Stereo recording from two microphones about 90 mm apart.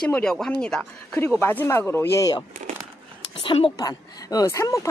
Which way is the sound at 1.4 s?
25° left (ahead or behind).